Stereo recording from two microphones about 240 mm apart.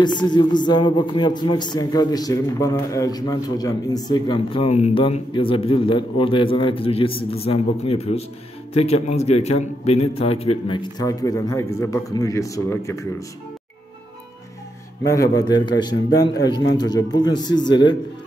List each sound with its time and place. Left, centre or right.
0.0 s a man's voice: centre
15.0 s a man's voice: centre